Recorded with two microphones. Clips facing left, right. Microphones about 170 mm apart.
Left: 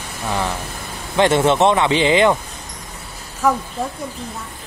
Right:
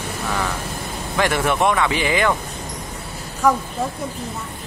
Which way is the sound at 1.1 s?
25° left (ahead or behind).